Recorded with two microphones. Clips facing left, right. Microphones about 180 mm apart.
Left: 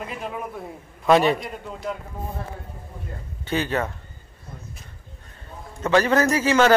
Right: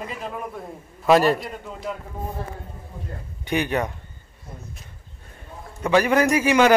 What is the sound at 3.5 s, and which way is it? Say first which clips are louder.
Speech: right 1 dB; 15° right (ahead or behind).